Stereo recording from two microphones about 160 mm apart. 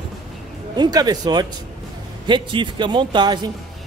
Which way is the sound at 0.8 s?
25° right (ahead or behind).